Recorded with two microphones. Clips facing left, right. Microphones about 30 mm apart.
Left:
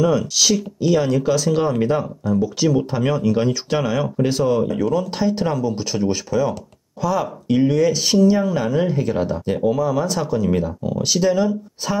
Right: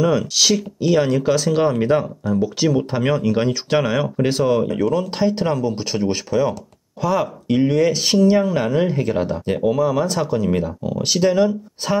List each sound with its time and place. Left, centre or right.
0.0 s speech: centre
5.1 s speech: right; by 11.0 s centre
11.0 s speech: right